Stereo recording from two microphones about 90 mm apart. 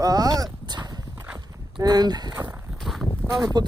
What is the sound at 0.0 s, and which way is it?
Dog, 45° right (ahead or behind).